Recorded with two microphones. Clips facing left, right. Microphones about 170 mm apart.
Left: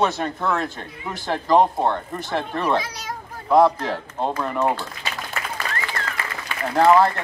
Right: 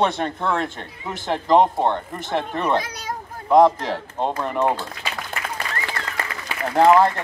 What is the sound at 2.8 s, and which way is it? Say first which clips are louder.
Speech: even; 55° right (ahead or behind).